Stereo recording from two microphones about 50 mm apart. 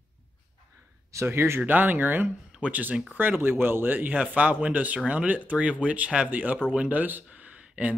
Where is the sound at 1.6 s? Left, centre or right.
Right.